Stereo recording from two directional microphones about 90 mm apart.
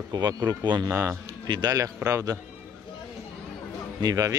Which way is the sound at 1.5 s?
50° right (ahead or behind).